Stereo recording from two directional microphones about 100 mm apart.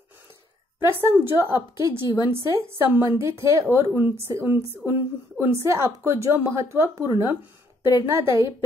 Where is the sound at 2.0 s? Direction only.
45° left (ahead or behind).